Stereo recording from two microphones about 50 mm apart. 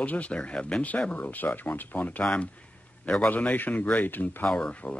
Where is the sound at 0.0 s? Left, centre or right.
Left.